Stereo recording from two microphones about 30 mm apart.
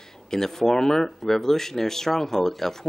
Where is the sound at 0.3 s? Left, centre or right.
Centre.